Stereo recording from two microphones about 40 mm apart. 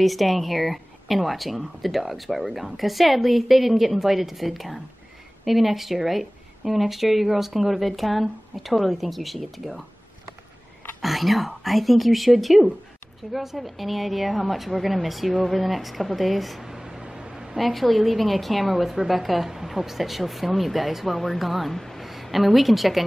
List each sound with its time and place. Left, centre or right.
0.0 s a woman's voice: centre
11.0 s a woman's voice: centre
16.7 s a sound: centre
17.6 s a woman's voice: centre